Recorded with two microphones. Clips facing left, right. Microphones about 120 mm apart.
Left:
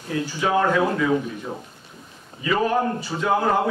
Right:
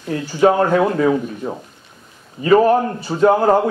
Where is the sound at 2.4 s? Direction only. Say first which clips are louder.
Right 9 dB; 45° right (ahead or behind).